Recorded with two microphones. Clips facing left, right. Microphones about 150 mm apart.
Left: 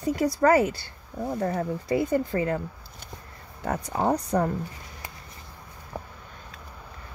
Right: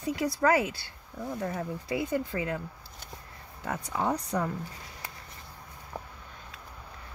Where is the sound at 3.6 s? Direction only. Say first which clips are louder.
Left 5 dB; 45° left (ahead or behind).